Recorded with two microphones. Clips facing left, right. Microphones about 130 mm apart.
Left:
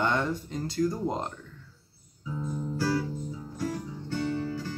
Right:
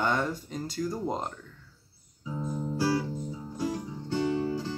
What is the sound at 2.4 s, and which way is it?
Music, 15° right (ahead or behind).